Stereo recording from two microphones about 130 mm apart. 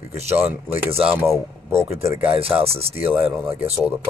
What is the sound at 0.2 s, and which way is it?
Speech, 55° right (ahead or behind).